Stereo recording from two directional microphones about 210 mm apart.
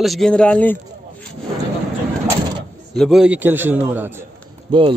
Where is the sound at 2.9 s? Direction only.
Centre (ahead or behind).